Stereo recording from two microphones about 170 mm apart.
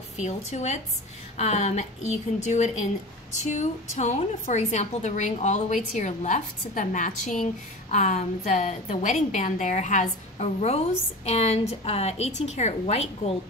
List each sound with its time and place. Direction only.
0.2 s a woman's voice: 40° left (ahead or behind)